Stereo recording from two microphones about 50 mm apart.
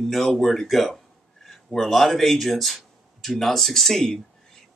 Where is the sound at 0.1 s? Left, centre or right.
Centre.